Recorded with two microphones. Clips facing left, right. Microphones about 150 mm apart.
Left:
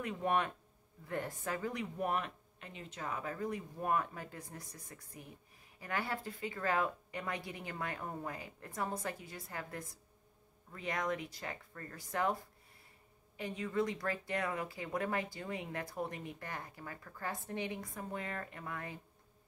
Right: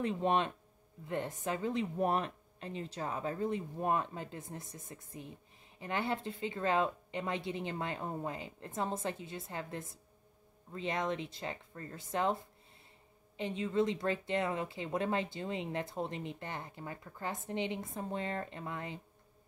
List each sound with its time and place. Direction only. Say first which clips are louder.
0.0 s speech: right 3 dB; 25° right (ahead or behind)